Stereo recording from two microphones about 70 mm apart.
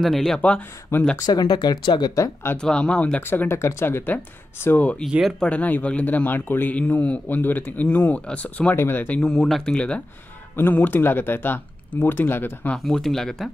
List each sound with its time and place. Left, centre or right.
0.0 s speech: centre
0.9 s speech: left
1.2 s speech: left
2.5 s speech: centre
3.2 s speech: left
3.4 s speech: left
9.2 s speech: centre
10.5 s speech: left
12.7 s speech: centre